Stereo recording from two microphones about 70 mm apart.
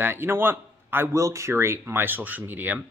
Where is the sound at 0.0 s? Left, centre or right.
Right.